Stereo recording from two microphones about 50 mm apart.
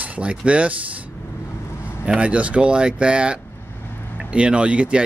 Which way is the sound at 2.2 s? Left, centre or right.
Right.